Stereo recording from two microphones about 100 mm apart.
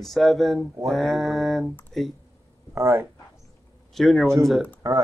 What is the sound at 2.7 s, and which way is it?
Speech, 25° right (ahead or behind).